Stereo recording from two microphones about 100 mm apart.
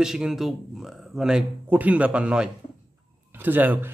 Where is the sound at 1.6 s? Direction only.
15° right (ahead or behind).